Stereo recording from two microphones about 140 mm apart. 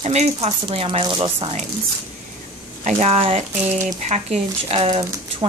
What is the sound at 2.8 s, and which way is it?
Speech, 55° right (ahead or behind).